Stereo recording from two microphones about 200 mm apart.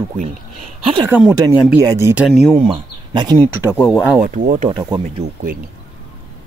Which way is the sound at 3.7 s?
10° left (ahead or behind).